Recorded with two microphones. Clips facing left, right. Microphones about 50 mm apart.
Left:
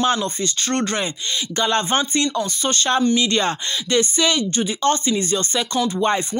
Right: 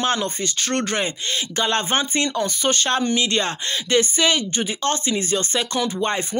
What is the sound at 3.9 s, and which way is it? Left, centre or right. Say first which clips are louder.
Speech: even; centre.